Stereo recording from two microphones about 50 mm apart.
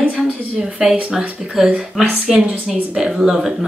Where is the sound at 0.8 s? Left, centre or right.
Centre.